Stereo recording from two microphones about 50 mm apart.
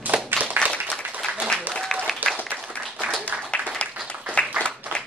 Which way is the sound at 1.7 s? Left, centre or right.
Centre.